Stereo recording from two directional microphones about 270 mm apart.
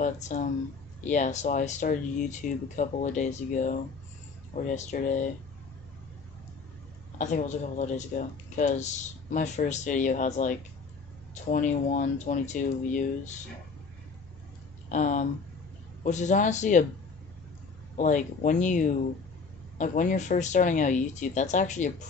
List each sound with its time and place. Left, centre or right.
0.0 s speech: left
7.2 s speech: left
14.9 s speech: left
17.9 s speech: left